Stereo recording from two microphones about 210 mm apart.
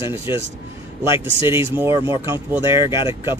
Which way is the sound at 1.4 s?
10° right (ahead or behind).